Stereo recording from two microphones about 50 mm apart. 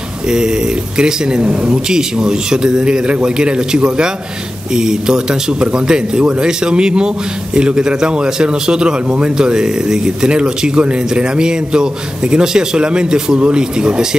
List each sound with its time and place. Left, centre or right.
0.3 s a man's voice: centre
1.4 s speech: right
1.7 s a man's voice: centre